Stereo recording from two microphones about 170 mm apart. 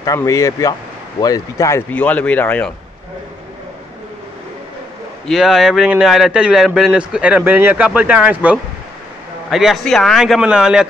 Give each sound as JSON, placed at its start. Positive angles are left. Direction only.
{"t": 0.0, "sound": "speech", "side_deg": 20}
{"t": 5.2, "sound": "a man's voice", "side_deg": 0}